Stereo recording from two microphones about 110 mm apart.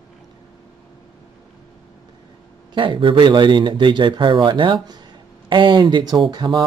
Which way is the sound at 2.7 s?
50° right (ahead or behind).